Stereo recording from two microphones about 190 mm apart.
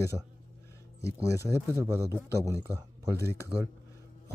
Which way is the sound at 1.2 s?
15° left (ahead or behind).